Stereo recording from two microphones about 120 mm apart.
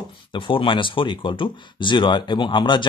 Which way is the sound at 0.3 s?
45° left (ahead or behind).